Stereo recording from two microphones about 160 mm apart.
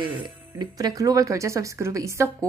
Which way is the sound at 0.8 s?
25° right (ahead or behind).